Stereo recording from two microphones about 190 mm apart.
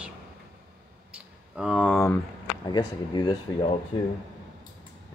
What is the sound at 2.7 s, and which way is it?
Speech, 20° left (ahead or behind).